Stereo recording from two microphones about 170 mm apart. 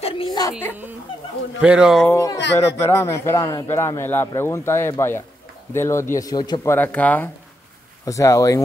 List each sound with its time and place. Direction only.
0.0 s whimper: 25° left (ahead or behind)
1.6 s speech: 5° right (ahead or behind)
2.0 s speech: 15° left (ahead or behind)